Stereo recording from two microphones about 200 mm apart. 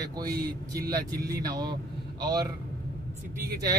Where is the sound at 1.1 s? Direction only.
50° right (ahead or behind).